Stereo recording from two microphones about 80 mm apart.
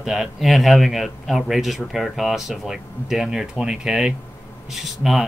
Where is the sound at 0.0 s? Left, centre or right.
Centre.